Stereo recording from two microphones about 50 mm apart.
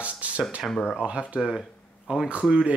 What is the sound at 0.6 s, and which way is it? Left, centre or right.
Speech, centre.